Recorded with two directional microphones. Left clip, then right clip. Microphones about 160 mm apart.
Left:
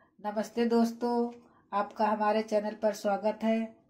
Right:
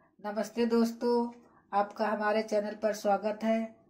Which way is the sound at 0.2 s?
35° left (ahead or behind).